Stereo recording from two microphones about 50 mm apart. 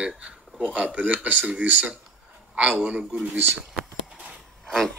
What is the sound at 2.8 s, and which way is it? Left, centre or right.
Speech, right.